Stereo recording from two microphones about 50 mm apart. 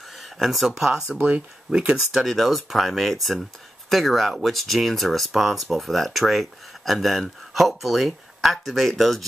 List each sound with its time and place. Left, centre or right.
0.1 s speech: centre
1.1 s speech: right
1.7 s speech: centre
2.2 s speech: centre